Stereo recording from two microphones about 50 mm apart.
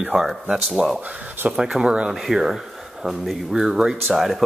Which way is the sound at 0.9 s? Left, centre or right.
Right.